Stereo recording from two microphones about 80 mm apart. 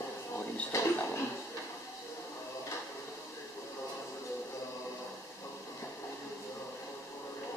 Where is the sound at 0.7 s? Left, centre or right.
Left.